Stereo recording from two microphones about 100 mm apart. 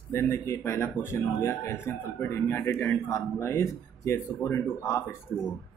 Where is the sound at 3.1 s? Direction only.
30° left (ahead or behind).